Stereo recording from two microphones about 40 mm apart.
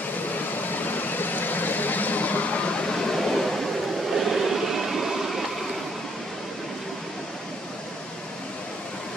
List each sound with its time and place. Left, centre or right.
0.6 s vehicle: left
2.9 s a sound: centre
4.1 s vehicle: centre